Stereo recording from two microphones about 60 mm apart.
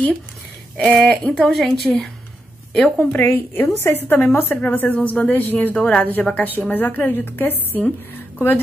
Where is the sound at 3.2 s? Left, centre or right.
Left.